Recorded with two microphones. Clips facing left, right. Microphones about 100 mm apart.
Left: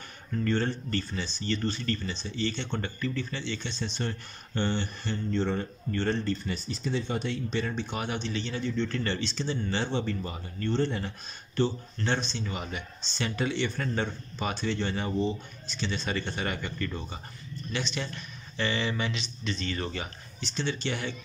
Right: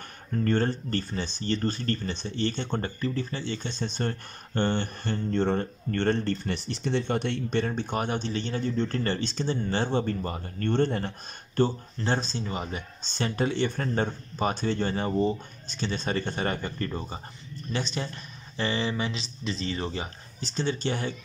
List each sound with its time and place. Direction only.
0.3 s speech: 45° right (ahead or behind); by 20.4 s 30° right (ahead or behind)
20.4 s speech: 40° right (ahead or behind)